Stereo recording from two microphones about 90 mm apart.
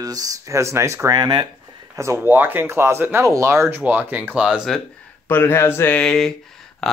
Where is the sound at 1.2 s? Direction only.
55° right (ahead or behind).